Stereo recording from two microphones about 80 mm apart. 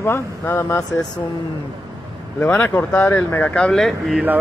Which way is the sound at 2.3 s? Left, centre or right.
Left.